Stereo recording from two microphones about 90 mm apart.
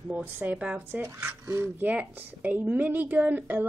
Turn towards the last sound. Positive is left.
turn(degrees=-20)  # may be behind; listen again after turning